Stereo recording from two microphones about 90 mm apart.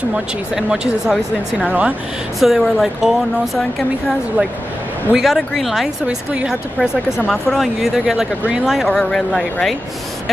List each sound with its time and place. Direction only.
0.1 s speech: 5° right (ahead or behind)
1.7 s speech: 15° right (ahead or behind)
2.4 s speech: centre (ahead or behind)
5.1 s speech: centre (ahead or behind)
6.0 s speech: 10° right (ahead or behind); by 9.8 s 5° left (ahead or behind)